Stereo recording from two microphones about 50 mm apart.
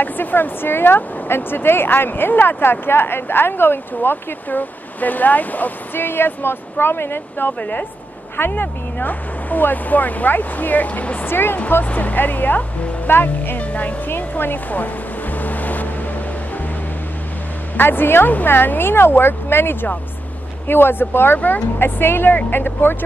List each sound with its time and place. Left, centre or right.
0.0 s speech: left
11.2 s speech: left
11.8 s speech: left
14.1 s speech: left
15.3 s vehicle: left
17.7 s speech: left
21.4 s speech: left
21.7 s speech: left